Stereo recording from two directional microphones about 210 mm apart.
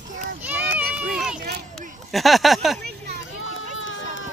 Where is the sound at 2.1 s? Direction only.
Centre (ahead or behind).